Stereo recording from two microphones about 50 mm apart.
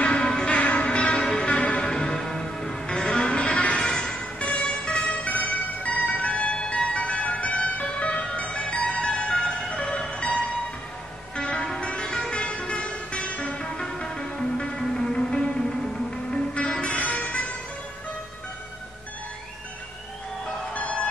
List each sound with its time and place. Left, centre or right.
0.0 s music: left
11.3 s vehicle: centre
16.6 s music: centre
16.9 s music: left
20.7 s music: left